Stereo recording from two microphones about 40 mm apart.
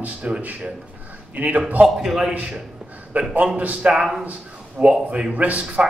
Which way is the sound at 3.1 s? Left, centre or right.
Right.